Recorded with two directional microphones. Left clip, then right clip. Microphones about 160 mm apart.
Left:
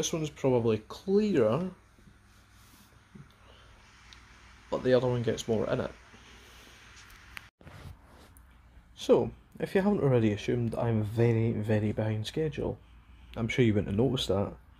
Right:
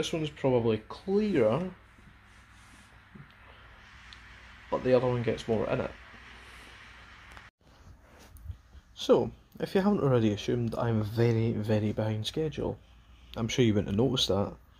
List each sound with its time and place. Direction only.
0.0 s speech: 15° left (ahead or behind)
4.9 s speech: 15° left (ahead or behind)
9.0 s speech: centre (ahead or behind)